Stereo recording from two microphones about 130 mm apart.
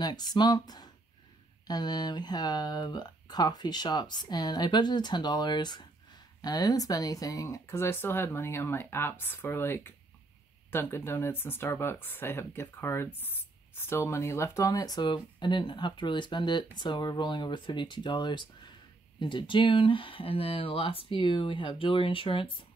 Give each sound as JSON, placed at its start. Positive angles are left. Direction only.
{"t": 0.0, "sound": "speech", "side_deg": 30}